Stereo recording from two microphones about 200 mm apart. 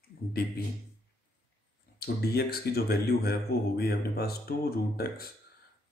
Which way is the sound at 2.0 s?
55° left (ahead or behind).